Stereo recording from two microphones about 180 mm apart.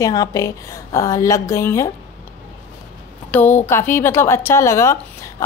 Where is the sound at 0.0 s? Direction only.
20° left (ahead or behind).